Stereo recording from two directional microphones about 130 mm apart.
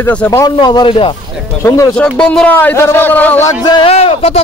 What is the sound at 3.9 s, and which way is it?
Speech, 50° left (ahead or behind).